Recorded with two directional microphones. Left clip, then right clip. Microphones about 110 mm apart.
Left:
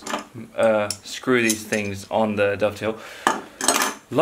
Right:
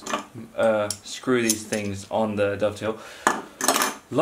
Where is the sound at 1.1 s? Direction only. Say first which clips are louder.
Left 4 dB; 10° left (ahead or behind).